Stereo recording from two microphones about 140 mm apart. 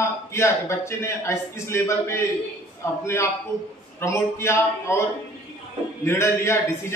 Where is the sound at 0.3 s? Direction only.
20° left (ahead or behind).